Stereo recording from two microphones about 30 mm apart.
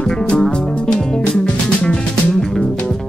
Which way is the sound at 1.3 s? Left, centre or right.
Left.